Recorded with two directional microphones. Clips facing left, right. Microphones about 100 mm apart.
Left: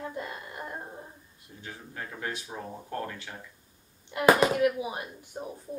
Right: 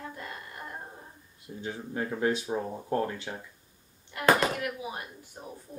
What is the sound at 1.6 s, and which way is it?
Speech, 20° right (ahead or behind).